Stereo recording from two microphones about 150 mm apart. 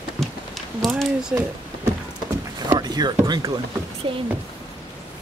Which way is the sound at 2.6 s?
25° right (ahead or behind).